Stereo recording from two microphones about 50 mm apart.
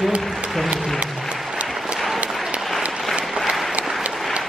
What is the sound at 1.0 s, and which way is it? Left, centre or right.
Applause, right.